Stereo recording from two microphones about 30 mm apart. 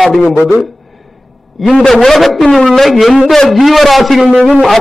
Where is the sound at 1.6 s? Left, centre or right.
Centre.